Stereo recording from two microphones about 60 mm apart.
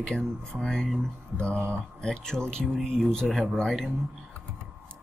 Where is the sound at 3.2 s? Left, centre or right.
Centre.